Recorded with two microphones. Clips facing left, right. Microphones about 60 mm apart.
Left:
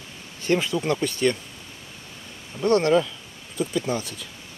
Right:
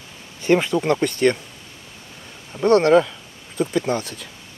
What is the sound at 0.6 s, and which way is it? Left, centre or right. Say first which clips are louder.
Speech: right 5 dB; right.